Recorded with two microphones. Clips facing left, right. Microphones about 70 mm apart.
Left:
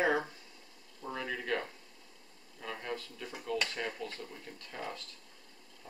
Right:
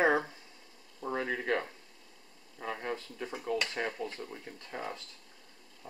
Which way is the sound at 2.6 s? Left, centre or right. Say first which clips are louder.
Right 3 dB; right.